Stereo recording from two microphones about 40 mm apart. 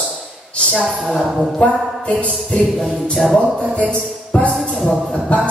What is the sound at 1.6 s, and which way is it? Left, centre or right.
Music, left.